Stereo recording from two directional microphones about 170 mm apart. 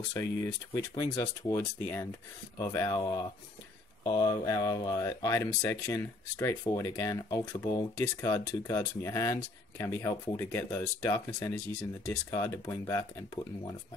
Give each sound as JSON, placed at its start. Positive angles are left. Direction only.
{"t": 0.1, "sound": "speech", "side_deg": 15}